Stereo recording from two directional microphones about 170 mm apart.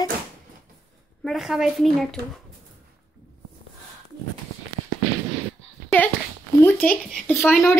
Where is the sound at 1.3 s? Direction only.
5° right (ahead or behind).